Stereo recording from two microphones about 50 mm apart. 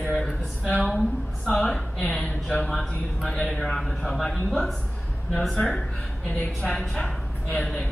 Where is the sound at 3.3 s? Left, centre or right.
Centre.